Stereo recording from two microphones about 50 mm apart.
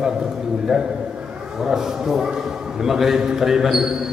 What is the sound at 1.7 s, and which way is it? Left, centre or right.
A man's voice, centre.